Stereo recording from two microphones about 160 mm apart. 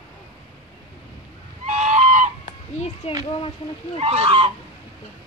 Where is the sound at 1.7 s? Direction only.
45° right (ahead or behind).